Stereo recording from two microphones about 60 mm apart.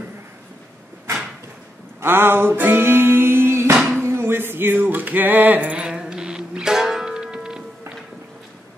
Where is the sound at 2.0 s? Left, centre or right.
Right.